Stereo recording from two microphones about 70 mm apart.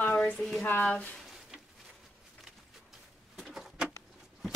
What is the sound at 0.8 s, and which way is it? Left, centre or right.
Speech, centre.